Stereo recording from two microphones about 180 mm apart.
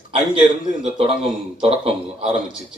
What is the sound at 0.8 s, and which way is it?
A man's voice, 30° right (ahead or behind).